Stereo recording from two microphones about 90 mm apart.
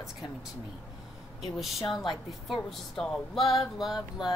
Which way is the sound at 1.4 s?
Centre (ahead or behind).